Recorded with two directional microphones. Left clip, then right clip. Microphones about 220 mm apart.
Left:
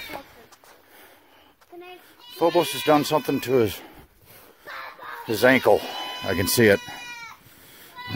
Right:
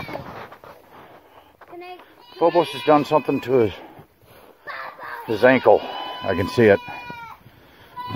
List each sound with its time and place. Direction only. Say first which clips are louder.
2.3 s speech: right 3 dB; 50° left (ahead or behind)
5.3 s speech: right 3 dB; 40° left (ahead or behind)